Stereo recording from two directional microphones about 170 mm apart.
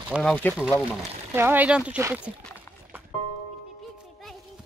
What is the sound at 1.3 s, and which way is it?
Speech, 10° right (ahead or behind).